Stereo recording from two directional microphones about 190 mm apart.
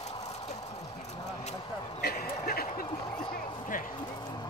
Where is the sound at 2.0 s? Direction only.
50° left (ahead or behind).